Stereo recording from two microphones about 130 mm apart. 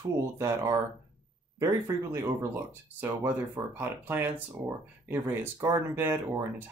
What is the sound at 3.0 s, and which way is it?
Speech, 15° right (ahead or behind).